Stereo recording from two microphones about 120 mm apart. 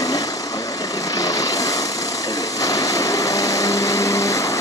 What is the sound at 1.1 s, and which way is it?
Vehicle, 30° left (ahead or behind).